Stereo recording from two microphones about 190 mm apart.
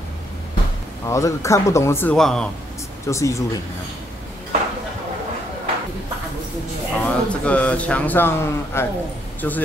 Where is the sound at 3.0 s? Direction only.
15° left (ahead or behind).